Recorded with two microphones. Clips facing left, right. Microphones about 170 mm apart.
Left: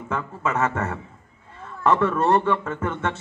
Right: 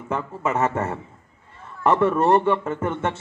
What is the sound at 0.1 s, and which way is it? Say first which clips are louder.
A man's voice: right 2 dB; 20° right (ahead or behind).